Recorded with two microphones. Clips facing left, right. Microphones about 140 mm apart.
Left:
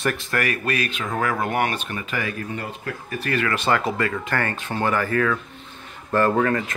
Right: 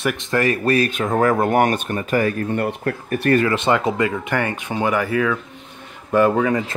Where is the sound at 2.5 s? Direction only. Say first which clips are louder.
Right 9 dB; 60° right (ahead or behind).